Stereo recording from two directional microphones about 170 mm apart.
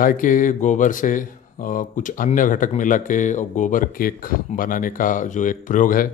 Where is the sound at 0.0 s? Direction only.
50° left (ahead or behind).